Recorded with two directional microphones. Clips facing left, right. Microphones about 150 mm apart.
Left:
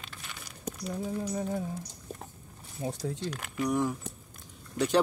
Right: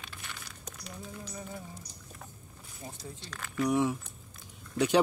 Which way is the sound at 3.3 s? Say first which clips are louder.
Right 1 dB; 15° left (ahead or behind).